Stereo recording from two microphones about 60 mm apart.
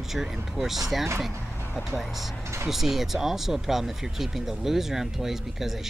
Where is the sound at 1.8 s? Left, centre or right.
Centre.